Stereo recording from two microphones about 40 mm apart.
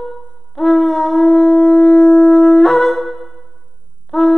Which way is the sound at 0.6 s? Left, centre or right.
Centre.